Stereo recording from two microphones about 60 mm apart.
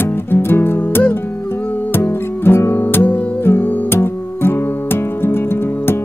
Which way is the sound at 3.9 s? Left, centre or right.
Left.